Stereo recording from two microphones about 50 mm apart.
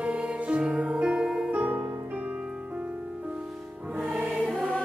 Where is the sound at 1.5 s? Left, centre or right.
Right.